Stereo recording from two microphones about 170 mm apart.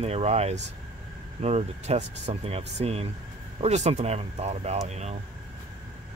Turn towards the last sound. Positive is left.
turn(degrees=-40)  # may be behind; listen again after turning